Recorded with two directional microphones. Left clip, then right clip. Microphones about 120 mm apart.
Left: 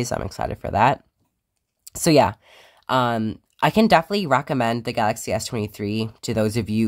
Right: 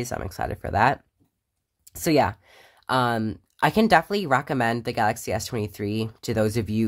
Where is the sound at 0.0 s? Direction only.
25° left (ahead or behind).